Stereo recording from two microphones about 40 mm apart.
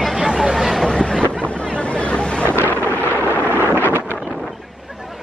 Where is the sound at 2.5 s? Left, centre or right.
Right.